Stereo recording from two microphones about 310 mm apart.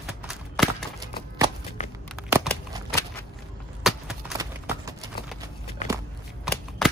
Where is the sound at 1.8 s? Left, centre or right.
Left.